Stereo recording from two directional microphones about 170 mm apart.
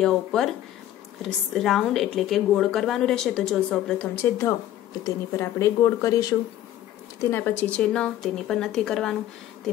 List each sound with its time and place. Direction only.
0.0 s a woman's voice: 5° left (ahead or behind)